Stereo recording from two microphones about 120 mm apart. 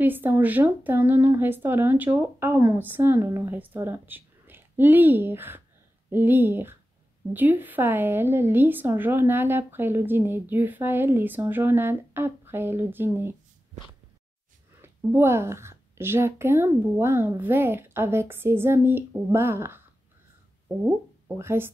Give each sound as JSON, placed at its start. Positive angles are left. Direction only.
{"t": 0.0, "sound": "a woman's voice", "side_deg": -15}
{"t": 14.8, "sound": "a woman's voice", "side_deg": -20}
{"t": 21.4, "sound": "a woman's voice", "side_deg": -20}